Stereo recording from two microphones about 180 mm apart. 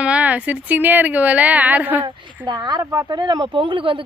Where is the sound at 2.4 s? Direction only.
25° right (ahead or behind).